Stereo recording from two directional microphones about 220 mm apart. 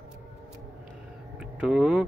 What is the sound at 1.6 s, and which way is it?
Speech, 5° right (ahead or behind).